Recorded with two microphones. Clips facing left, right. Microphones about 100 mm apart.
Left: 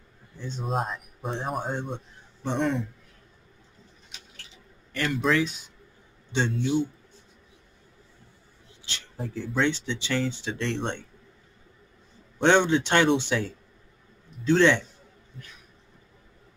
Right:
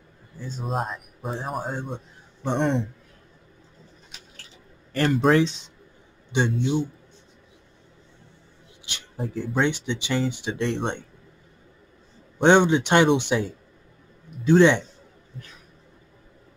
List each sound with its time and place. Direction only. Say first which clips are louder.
0.4 s speech: right 1 dB; 5° right (ahead or behind)
2.4 s a man's voice: right 3 dB; 60° right (ahead or behind)
4.9 s speech: right 6 dB; 45° right (ahead or behind)
5.4 s speech: right 5 dB; 25° right (ahead or behind)
8.8 s a sound: even; 15° right (ahead or behind)
9.6 s speech: right 2 dB; 15° right (ahead or behind)
12.4 s speech: right 3 dB; 15° right (ahead or behind)